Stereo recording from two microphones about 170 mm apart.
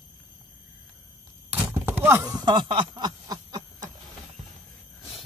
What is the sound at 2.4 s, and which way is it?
Snicker, 25° right (ahead or behind).